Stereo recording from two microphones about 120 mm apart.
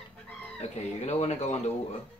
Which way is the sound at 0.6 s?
65° left (ahead or behind).